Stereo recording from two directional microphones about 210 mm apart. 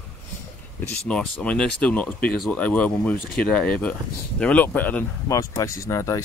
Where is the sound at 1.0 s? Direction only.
5° left (ahead or behind).